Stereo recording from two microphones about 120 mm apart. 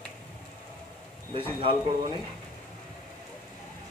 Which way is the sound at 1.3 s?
50° right (ahead or behind).